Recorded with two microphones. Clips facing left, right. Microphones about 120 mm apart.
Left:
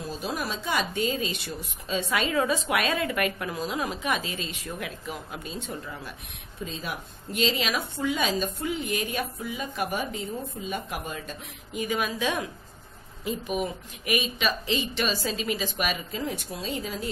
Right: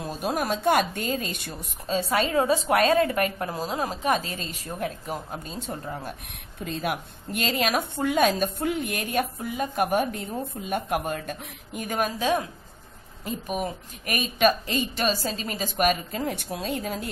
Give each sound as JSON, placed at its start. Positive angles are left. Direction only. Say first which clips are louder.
{"t": 0.2, "sound": "speech", "louder": "right 9 dB", "side_deg": -55}
{"t": 6.6, "sound": "a woman's voice", "louder": "right 5 dB", "side_deg": -65}